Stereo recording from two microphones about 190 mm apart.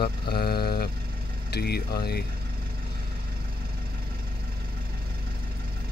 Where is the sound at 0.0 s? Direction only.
55° left (ahead or behind).